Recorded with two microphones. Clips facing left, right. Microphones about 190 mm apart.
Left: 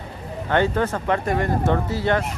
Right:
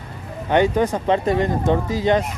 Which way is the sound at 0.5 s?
15° right (ahead or behind).